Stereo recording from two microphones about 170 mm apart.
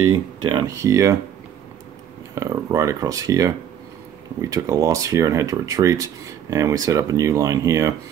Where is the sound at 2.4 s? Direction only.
20° right (ahead or behind).